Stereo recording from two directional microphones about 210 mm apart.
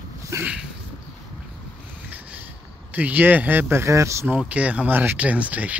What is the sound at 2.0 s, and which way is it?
Speech, 10° right (ahead or behind).